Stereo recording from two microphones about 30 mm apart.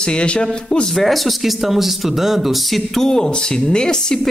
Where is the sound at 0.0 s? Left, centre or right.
Left.